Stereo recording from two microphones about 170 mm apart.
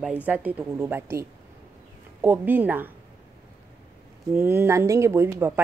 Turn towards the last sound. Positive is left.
turn(degrees=-15)  # may be behind; listen again after turning